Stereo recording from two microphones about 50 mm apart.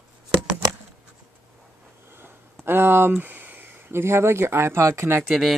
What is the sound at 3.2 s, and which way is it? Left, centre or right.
Speech, right.